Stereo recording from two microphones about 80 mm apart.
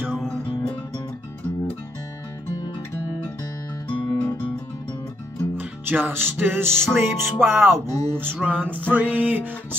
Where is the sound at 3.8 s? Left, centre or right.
Centre.